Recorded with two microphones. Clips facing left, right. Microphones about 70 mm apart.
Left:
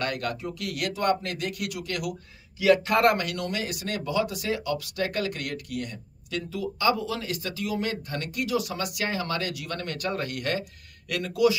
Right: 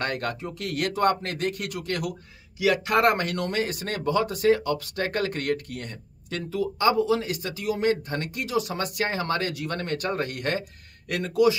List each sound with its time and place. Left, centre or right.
0.0 s speech: right
2.6 s speech: right